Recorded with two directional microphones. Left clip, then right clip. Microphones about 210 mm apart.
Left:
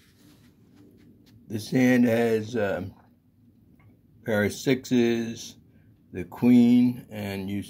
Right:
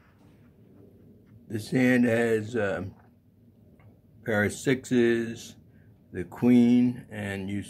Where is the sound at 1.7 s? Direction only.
5° left (ahead or behind).